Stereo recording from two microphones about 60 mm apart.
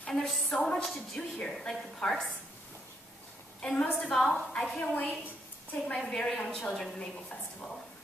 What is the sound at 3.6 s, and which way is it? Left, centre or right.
Speech, centre.